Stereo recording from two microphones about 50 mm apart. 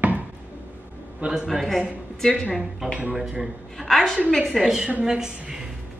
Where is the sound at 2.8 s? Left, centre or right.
Centre.